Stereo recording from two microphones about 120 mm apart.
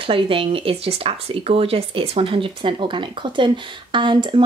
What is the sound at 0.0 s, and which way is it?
Speech, 50° right (ahead or behind).